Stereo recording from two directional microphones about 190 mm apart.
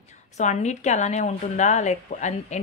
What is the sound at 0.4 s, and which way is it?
Speech, 40° left (ahead or behind).